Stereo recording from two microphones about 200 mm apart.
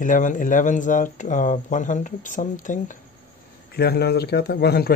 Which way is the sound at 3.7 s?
55° left (ahead or behind).